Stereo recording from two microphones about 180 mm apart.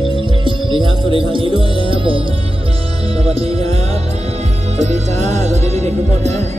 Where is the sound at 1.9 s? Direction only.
30° right (ahead or behind).